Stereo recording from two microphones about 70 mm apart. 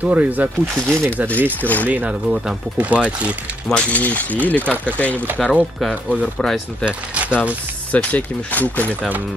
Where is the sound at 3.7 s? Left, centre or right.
Left.